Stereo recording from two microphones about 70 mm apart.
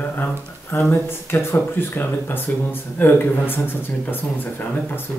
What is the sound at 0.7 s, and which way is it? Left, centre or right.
Speech, left.